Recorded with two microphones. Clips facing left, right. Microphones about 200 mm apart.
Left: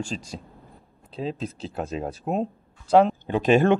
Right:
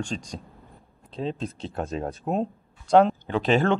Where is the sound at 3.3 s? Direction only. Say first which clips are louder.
Left 3 dB; 15° left (ahead or behind).